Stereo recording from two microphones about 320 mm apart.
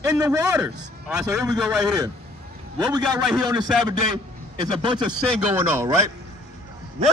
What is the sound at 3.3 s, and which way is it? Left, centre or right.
Speech, centre.